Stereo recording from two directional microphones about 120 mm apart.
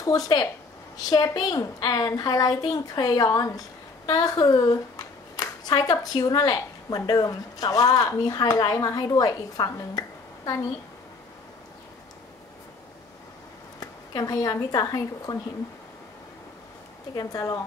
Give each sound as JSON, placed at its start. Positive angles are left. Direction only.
{"t": 0.0, "sound": "speech", "side_deg": 30}
{"t": 13.7, "sound": "speech", "side_deg": 30}
{"t": 17.1, "sound": "speech", "side_deg": 30}